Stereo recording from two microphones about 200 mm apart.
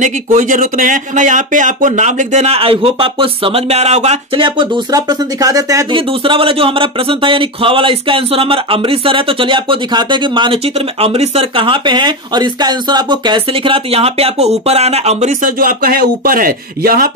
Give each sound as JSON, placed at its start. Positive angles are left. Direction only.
{"t": 0.0, "sound": "speech", "side_deg": -40}